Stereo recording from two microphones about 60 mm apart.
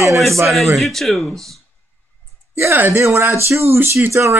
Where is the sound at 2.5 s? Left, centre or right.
Right.